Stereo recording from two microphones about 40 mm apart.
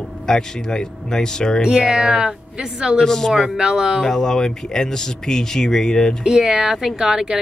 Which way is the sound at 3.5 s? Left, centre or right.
Right.